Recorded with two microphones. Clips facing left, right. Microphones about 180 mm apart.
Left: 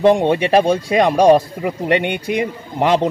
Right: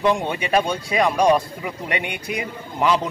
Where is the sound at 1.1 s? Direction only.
40° left (ahead or behind).